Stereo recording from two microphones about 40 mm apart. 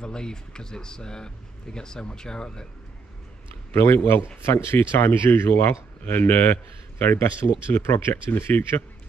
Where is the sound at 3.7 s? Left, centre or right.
Left.